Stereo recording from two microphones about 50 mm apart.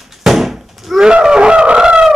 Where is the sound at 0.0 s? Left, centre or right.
Centre.